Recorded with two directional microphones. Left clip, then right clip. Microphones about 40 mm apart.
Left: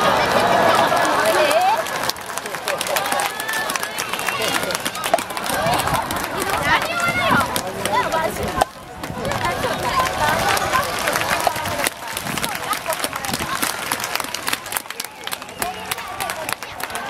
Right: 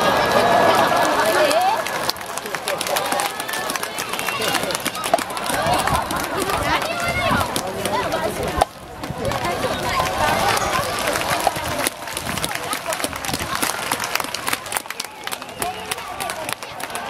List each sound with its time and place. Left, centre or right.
0.0 s run: left
2.9 s run: left
8.6 s run: left
12.4 s applause: left